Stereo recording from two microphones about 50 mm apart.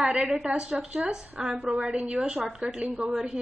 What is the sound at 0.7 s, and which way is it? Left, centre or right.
Speech, right.